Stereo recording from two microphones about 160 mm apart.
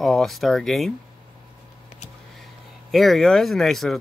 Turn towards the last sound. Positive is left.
turn(degrees=0)  # may be behind; listen again after turning